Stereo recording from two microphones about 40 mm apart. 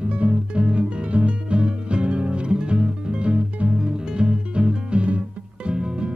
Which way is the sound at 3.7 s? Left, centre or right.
Right.